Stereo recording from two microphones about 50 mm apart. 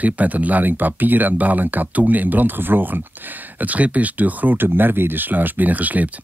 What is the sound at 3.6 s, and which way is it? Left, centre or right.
Speech, right.